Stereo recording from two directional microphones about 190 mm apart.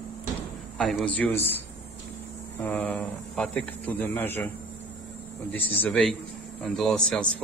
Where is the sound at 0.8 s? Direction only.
5° left (ahead or behind).